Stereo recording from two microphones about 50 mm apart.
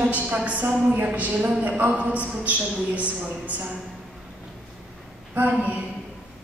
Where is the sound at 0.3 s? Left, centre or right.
Right.